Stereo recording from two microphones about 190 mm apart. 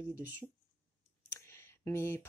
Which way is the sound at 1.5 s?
15° left (ahead or behind).